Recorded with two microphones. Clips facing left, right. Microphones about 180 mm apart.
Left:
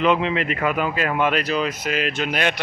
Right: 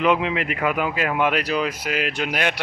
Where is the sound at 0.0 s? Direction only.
10° right (ahead or behind).